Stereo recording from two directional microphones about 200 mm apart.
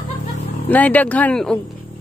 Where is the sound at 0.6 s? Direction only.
10° left (ahead or behind).